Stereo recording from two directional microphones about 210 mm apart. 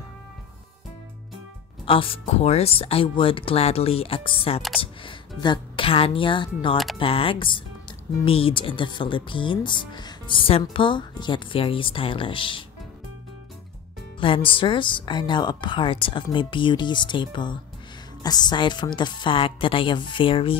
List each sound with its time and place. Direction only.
1.9 s speech: 25° left (ahead or behind)
14.2 s speech: 25° left (ahead or behind)